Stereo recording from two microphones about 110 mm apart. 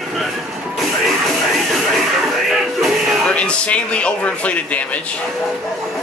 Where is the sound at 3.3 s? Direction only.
10° left (ahead or behind).